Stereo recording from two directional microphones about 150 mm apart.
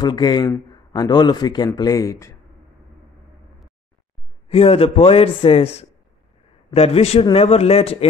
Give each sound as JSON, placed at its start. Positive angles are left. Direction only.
{"t": 0.0, "sound": "a man's voice", "side_deg": 30}
{"t": 4.5, "sound": "a man's voice", "side_deg": 40}